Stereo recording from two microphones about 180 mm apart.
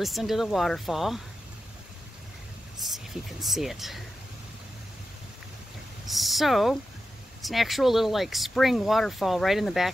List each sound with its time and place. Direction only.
0.0 s speech: centre (ahead or behind)
2.9 s speech: centre (ahead or behind)
6.0 s speech: centre (ahead or behind)